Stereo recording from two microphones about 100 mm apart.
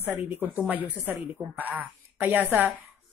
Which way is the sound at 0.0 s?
20° right (ahead or behind).